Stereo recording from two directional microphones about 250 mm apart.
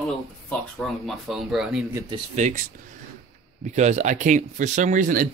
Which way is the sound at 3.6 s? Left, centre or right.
Right.